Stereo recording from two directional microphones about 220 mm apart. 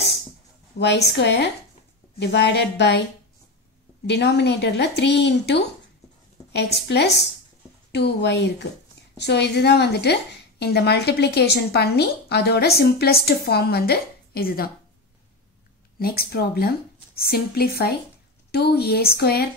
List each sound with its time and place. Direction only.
0.7 s a woman's voice: 50° left (ahead or behind)
4.0 s a woman's voice: 50° left (ahead or behind)
16.0 s a woman's voice: 45° left (ahead or behind)